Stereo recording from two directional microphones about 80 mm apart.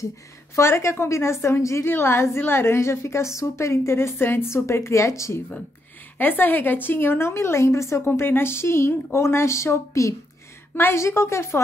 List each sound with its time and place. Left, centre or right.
0.6 s a woman's voice: left
6.1 s a woman's voice: left